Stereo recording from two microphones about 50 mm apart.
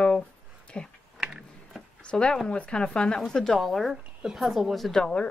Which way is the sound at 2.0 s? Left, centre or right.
Centre.